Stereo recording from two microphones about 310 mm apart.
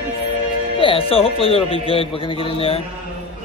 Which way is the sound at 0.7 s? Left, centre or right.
Centre.